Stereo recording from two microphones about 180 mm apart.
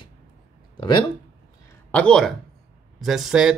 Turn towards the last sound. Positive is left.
turn(degrees=-5)  # may be behind; listen again after turning